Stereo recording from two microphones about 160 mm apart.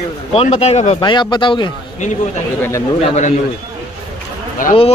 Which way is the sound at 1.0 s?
30° left (ahead or behind).